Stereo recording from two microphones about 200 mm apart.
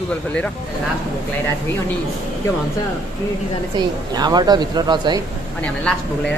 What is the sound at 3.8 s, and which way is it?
Speech, 20° right (ahead or behind).